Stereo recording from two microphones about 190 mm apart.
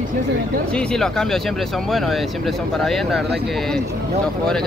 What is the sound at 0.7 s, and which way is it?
Speech, 5° left (ahead or behind).